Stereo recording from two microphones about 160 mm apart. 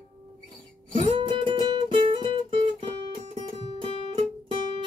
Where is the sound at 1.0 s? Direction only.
35° right (ahead or behind).